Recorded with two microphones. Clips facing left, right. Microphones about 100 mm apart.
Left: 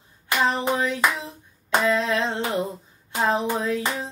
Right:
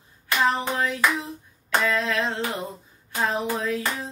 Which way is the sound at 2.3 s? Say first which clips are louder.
Left 3 dB; 15° left (ahead or behind).